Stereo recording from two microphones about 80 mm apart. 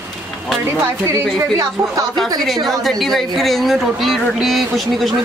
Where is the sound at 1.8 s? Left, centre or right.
Right.